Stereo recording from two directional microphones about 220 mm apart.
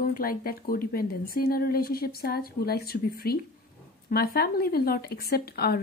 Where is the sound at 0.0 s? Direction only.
40° left (ahead or behind).